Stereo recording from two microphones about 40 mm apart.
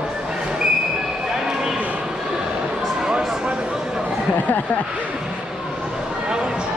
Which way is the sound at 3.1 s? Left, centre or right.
Right.